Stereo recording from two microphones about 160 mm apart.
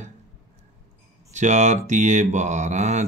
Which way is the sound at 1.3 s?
45° right (ahead or behind).